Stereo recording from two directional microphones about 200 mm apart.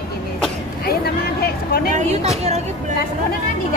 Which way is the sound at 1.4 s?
50° left (ahead or behind).